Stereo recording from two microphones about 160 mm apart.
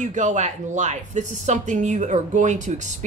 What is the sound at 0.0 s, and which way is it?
Speech, 50° right (ahead or behind).